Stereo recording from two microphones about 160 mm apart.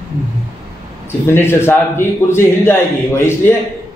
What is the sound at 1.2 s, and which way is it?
A man's voice, 15° left (ahead or behind).